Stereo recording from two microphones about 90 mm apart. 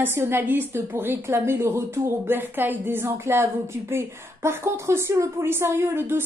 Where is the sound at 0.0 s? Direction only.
25° right (ahead or behind).